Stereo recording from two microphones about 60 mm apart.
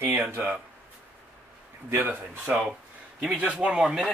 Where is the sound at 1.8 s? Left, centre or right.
Right.